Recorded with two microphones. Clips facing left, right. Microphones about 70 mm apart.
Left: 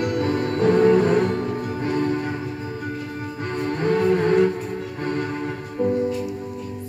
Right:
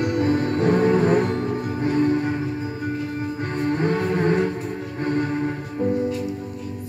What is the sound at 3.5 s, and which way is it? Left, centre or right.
Music, right.